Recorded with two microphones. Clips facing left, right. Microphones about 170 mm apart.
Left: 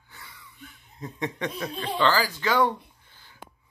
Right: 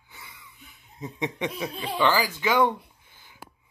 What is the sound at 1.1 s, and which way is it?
Speech, 15° right (ahead or behind).